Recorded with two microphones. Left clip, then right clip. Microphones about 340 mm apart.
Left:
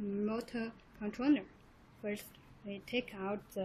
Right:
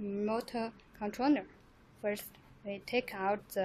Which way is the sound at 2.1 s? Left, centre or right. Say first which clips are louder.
Right 2 dB; right.